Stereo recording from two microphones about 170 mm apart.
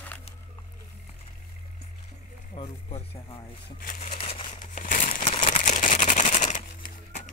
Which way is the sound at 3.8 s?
50° left (ahead or behind).